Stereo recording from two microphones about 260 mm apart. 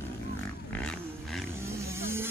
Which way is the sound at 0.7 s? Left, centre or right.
Centre.